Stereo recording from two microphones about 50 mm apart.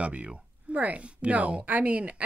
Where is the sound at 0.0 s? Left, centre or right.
Right.